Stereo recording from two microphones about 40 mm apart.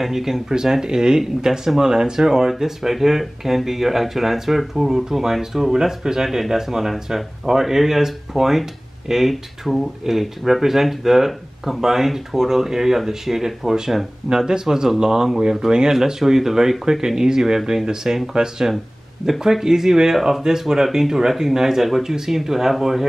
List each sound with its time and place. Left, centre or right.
0.0 s speech: centre